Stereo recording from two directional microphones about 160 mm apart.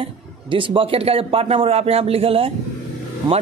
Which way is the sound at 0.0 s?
35° right (ahead or behind).